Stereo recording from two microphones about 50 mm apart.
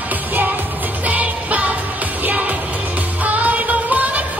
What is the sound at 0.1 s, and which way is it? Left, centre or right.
Music, right.